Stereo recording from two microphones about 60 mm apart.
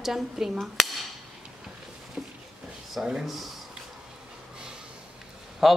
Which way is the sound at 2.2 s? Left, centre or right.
Centre.